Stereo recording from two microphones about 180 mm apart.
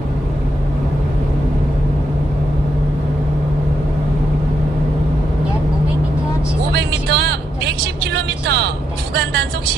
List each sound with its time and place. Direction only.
6.7 s vehicle: 70° right (ahead or behind)